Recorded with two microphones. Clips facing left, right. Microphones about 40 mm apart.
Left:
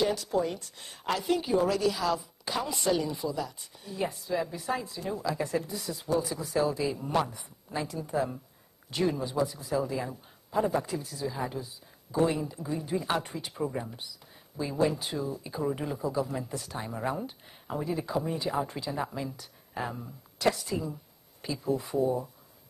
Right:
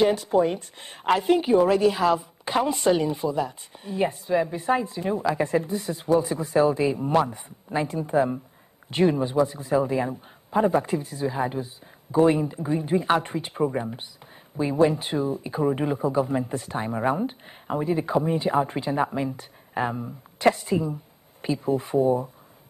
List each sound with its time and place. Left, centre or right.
0.0 s a woman's voice: right